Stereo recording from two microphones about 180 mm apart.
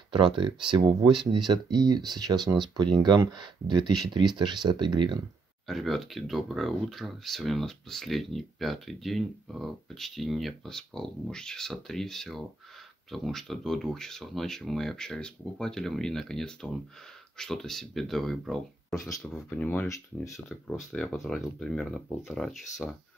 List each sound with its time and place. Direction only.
0.1 s speech: 30° right (ahead or behind)
5.7 s speech: centre (ahead or behind)
20.3 s speech: centre (ahead or behind)